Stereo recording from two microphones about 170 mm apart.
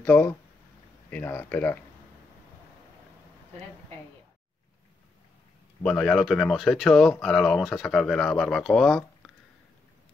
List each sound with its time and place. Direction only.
0.0 s speech: 10° left (ahead or behind)
5.8 s speech: 5° left (ahead or behind)